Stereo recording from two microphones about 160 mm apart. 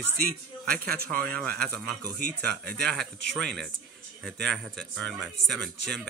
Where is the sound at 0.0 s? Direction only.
75° right (ahead or behind).